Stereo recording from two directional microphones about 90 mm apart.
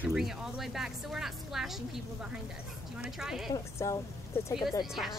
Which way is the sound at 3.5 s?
35° left (ahead or behind).